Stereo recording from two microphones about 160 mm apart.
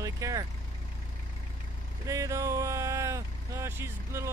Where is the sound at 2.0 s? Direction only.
20° right (ahead or behind).